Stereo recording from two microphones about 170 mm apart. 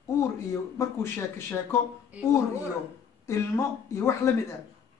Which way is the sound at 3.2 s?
15° left (ahead or behind).